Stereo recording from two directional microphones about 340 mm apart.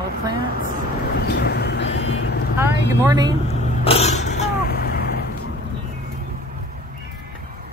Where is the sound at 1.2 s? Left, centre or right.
Left.